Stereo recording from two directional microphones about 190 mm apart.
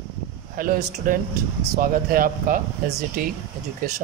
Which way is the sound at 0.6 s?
45° right (ahead or behind).